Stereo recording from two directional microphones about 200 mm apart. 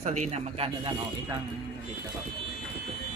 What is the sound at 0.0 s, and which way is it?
Speech, 30° right (ahead or behind).